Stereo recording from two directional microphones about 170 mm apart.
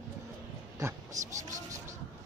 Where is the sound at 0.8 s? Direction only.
20° right (ahead or behind).